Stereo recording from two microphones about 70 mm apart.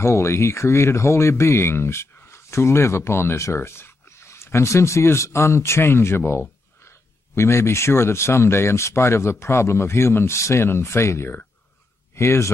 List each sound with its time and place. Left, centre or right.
0.0 s speech: left